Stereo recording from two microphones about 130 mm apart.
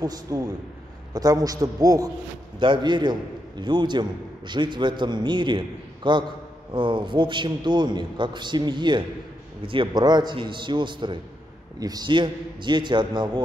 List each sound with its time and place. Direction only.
0.0 s a man's voice: 30° right (ahead or behind)